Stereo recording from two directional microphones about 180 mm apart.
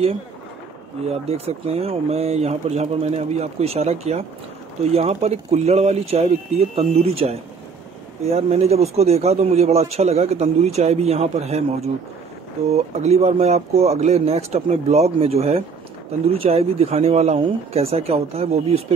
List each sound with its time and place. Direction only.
1.0 s a man's voice: 35° right (ahead or behind)